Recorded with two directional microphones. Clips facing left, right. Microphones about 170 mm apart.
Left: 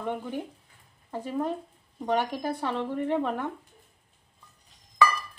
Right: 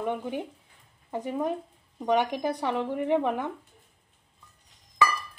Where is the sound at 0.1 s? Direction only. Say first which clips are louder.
Right 1 dB; 15° right (ahead or behind).